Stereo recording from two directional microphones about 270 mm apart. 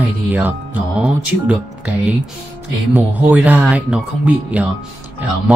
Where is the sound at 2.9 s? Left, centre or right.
Centre.